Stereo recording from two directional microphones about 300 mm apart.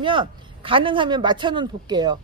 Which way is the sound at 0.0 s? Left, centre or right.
Centre.